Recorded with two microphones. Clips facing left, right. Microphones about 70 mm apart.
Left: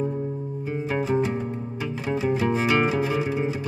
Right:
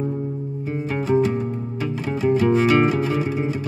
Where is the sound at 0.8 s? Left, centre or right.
Centre.